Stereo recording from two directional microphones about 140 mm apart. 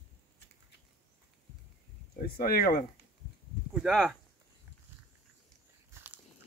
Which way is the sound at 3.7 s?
Centre (ahead or behind).